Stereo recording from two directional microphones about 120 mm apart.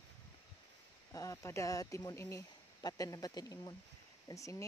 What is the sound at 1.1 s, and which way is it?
Speech, 25° left (ahead or behind).